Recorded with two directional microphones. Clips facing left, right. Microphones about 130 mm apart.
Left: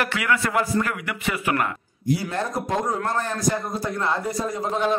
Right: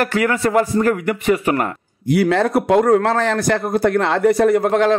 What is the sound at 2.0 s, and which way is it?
A man's voice, 80° right.